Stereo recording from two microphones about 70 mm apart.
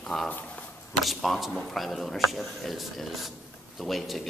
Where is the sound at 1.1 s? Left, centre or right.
Centre.